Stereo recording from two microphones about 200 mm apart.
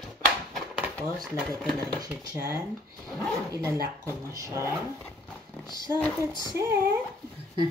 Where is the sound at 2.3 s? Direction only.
15° right (ahead or behind).